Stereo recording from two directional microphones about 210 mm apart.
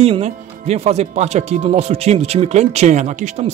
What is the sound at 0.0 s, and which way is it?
Speech, 30° right (ahead or behind).